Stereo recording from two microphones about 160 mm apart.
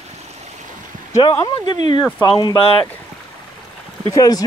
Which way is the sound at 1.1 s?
25° left (ahead or behind).